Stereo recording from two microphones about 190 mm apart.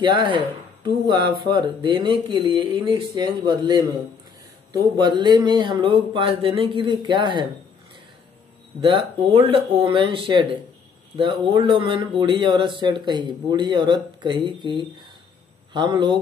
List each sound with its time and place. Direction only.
0.0 s a man's voice: 25° right (ahead or behind)
8.8 s a man's voice: 25° right (ahead or behind)